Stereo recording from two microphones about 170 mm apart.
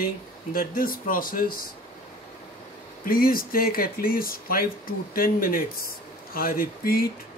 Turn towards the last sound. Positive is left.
turn(degrees=60)  # may be behind; listen again after turning